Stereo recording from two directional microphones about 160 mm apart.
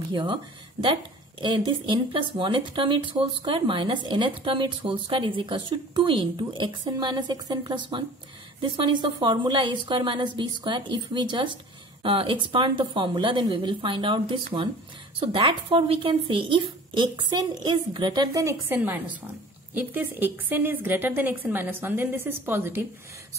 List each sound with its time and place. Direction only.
0.1 s speech: 30° right (ahead or behind)
1.7 s a woman's voice: 30° right (ahead or behind); by 22.8 s 15° right (ahead or behind)